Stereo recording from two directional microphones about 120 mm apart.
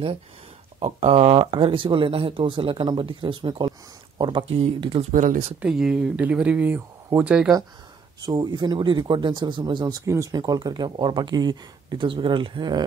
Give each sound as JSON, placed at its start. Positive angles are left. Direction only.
{"t": 0.8, "sound": "speech", "side_deg": -65}
{"t": 5.1, "sound": "speech", "side_deg": -90}
{"t": 5.6, "sound": "speech", "side_deg": -5}
{"t": 8.3, "sound": "speech", "side_deg": -40}
{"t": 10.0, "sound": "speech", "side_deg": -25}